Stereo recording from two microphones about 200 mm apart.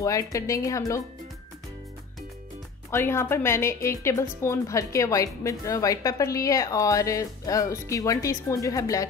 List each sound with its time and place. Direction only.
0.0 s speech: 15° left (ahead or behind)
2.9 s speech: 15° left (ahead or behind)